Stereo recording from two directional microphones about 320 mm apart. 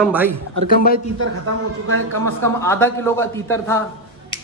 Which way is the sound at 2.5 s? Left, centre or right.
Centre.